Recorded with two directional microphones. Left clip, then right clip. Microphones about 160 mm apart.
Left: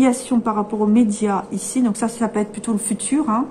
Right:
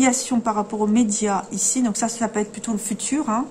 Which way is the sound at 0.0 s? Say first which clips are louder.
Left 2 dB; 20° right (ahead or behind).